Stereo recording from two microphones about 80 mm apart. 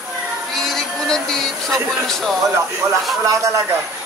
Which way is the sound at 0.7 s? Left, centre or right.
Centre.